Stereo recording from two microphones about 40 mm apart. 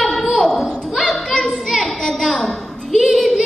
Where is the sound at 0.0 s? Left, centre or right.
Centre.